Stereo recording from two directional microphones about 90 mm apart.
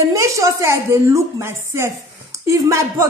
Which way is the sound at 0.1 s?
35° right (ahead or behind).